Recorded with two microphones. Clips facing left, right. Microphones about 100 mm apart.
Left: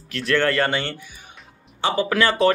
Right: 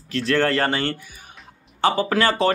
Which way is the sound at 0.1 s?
35° right (ahead or behind).